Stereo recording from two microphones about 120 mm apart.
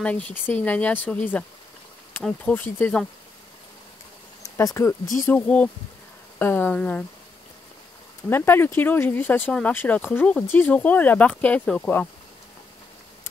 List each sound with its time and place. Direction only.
0.0 s speech: 10° left (ahead or behind)
4.6 s speech: 25° left (ahead or behind)
5.3 s speech: 10° left (ahead or behind)
8.3 s speech: 20° left (ahead or behind)